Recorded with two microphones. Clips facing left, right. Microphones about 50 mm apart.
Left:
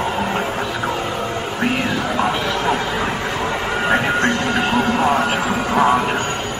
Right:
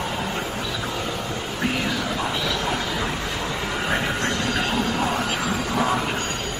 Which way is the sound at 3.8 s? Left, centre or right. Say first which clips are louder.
Left 8 dB; left.